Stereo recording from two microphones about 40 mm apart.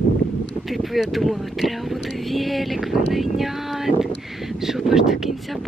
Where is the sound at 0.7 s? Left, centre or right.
Centre.